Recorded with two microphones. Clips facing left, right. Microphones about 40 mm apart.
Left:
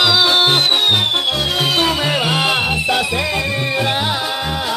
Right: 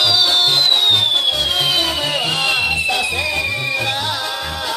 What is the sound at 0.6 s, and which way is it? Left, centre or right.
Music, centre.